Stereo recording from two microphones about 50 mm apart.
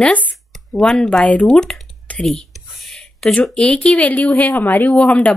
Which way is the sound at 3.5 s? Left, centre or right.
Left.